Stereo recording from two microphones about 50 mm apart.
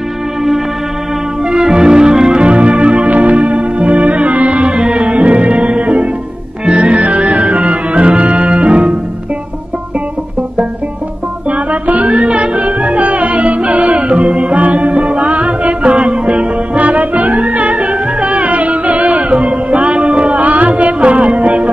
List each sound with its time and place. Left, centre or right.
1.5 s music: centre
11.5 s music: right